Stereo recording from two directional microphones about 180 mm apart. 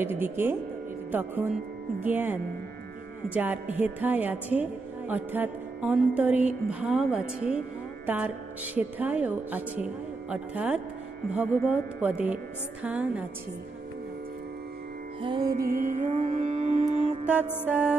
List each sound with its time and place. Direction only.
0.0 s speech: 10° right (ahead or behind)
3.7 s speech: 10° right (ahead or behind)
8.7 s speech: 10° right (ahead or behind)
15.2 s music: 25° right (ahead or behind)
15.5 s music: 50° right (ahead or behind)
17.6 s speech: 5° right (ahead or behind)